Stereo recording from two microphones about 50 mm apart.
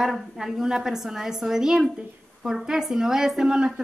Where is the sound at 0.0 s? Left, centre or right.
Centre.